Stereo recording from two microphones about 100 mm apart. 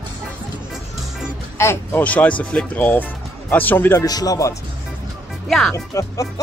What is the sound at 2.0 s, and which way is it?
Speech, 15° left (ahead or behind).